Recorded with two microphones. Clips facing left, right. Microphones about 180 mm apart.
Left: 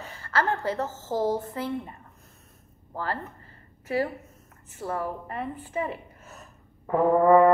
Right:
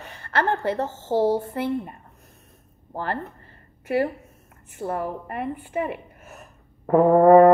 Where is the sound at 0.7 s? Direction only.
25° right (ahead or behind).